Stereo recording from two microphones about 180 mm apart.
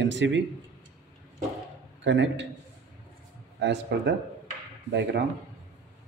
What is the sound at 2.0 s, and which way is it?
Speech, 90° right.